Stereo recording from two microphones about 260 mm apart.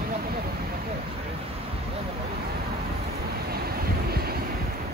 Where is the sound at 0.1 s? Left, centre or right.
Right.